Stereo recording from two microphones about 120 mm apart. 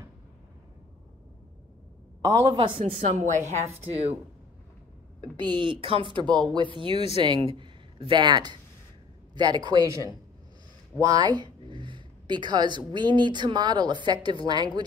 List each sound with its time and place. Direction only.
2.2 s a woman's voice: 30° right (ahead or behind)
2.5 s speech: 45° right (ahead or behind)
3.0 s a woman's voice: 90° right
3.8 s a woman's voice: 60° right (ahead or behind)
5.4 s speech: 40° right (ahead or behind)
6.2 s speech: 5° left (ahead or behind)
6.5 s a man's voice: 40° right (ahead or behind)